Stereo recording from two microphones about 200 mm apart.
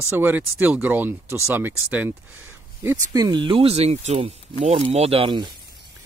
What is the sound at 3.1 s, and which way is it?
Speech, 20° right (ahead or behind).